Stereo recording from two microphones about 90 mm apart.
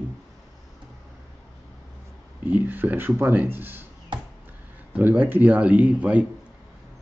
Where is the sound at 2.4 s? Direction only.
20° right (ahead or behind).